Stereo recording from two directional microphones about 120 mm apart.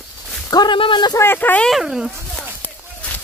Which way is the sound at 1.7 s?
5° right (ahead or behind).